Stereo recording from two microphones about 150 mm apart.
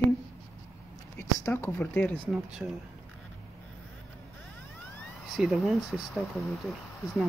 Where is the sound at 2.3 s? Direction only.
5° right (ahead or behind).